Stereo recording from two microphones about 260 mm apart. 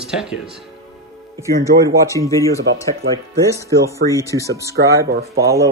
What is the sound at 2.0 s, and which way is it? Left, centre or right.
Speech, centre.